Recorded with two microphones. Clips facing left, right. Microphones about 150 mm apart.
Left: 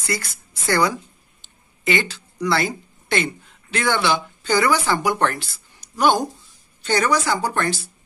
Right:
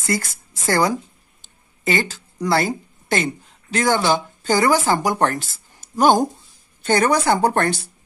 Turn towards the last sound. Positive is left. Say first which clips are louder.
# right 5 dB
turn(degrees=-60)  # may be behind; listen again after turning